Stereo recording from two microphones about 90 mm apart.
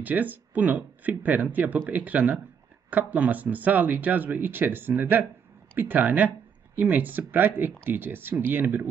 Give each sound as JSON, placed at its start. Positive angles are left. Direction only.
{"t": 0.0, "sound": "speech", "side_deg": -20}